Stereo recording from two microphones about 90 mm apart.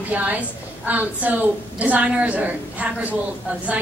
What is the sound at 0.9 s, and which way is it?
Speech, 20° right (ahead or behind).